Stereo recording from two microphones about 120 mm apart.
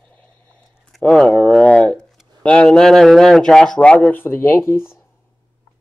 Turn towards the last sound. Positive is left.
turn(degrees=20)  # may be behind; listen again after turning